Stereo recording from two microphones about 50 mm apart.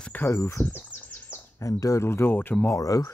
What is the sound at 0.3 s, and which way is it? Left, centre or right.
Speech, left.